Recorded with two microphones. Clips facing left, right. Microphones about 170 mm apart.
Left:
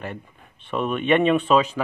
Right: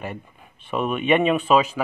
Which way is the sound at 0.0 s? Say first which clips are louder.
Right 1 dB; 10° right (ahead or behind).